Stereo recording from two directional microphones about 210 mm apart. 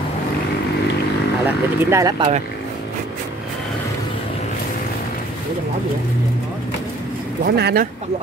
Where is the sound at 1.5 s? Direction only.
15° right (ahead or behind).